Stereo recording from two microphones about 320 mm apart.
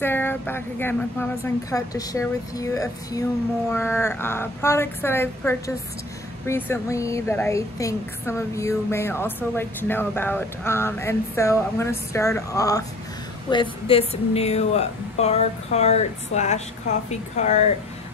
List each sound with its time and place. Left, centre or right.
0.0 s a woman's voice: centre